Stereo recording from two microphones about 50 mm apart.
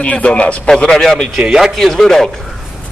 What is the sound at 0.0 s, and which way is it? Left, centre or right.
Speech, left.